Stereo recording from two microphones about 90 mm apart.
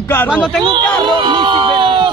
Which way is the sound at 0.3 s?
5° right (ahead or behind).